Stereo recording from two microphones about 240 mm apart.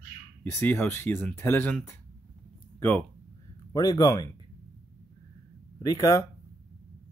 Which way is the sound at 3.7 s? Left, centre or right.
Centre.